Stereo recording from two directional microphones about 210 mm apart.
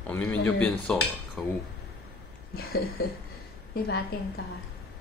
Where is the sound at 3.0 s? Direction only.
45° left (ahead or behind).